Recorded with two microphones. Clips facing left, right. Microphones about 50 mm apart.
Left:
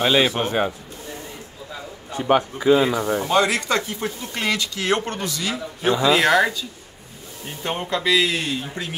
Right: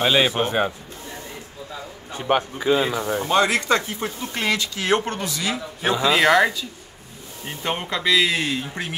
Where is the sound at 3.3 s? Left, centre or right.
Right.